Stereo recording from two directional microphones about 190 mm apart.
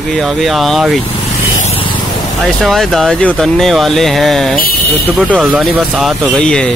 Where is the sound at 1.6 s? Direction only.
30° left (ahead or behind).